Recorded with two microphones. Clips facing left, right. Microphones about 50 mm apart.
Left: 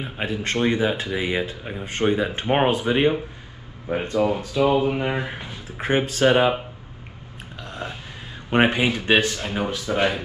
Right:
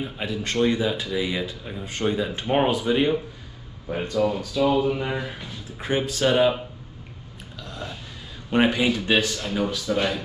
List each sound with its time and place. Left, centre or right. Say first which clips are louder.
0.0 s speech: left 2 dB; left
5.8 s speech: left 3 dB; left
7.5 s a sound: left 3 dB; left
8.5 s speech: left 1 dB; left